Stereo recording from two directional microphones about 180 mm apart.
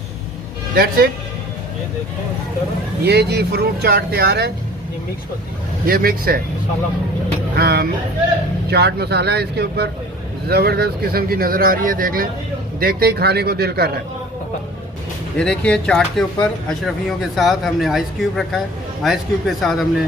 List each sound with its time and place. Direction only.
0.7 s speech: 60° right (ahead or behind)
3.0 s speech: 65° right (ahead or behind)
5.9 s speech: 55° right (ahead or behind)
7.5 s speech: 60° right (ahead or behind)
15.3 s speech: 5° left (ahead or behind)